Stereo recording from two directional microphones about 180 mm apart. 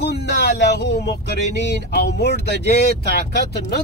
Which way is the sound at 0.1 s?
70° left (ahead or behind).